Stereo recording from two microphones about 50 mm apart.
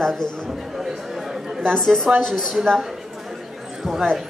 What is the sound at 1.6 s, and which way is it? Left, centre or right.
A woman's voice, centre.